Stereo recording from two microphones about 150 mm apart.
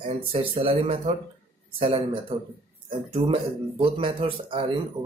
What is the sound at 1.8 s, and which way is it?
Speech, 35° right (ahead or behind).